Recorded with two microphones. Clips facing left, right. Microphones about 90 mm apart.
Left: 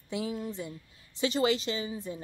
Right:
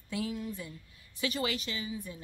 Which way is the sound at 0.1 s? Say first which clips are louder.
Left 2 dB; 20° left (ahead or behind).